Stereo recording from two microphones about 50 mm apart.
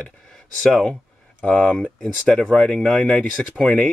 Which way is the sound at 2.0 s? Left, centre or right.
Centre.